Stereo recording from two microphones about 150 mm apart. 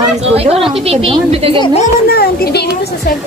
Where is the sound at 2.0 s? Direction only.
90° left.